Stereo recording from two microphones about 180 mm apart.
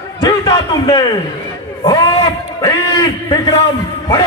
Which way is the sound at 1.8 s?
30° left (ahead or behind).